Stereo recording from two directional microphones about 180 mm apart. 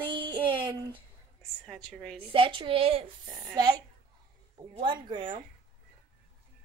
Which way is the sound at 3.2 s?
5° right (ahead or behind).